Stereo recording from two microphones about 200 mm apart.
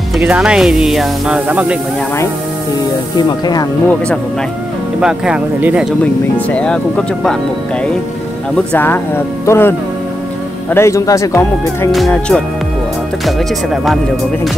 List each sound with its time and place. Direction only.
0.2 s speech: 5° right (ahead or behind)
3.2 s speech: 20° left (ahead or behind)
5.0 s speech: 5° right (ahead or behind)
6.3 s speech: 5° left (ahead or behind)
8.7 s speech: 10° left (ahead or behind)
11.9 s speech: centre (ahead or behind)